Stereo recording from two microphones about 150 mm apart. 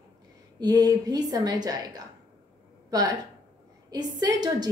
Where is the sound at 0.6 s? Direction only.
25° right (ahead or behind).